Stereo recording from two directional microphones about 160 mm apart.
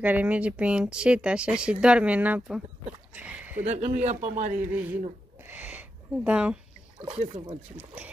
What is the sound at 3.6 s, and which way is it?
Speech, 40° right (ahead or behind).